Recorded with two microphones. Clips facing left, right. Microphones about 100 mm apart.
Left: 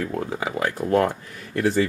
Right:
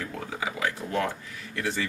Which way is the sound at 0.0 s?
45° left (ahead or behind).